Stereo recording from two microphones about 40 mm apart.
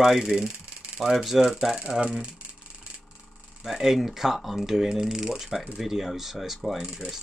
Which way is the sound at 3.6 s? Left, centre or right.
Centre.